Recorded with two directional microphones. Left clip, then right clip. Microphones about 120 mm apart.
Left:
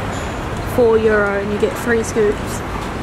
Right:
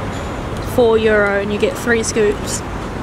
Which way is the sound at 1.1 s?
25° right (ahead or behind).